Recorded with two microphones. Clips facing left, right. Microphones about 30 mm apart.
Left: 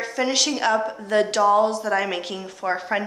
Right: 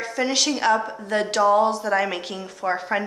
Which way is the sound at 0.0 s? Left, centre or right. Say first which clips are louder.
Even; centre.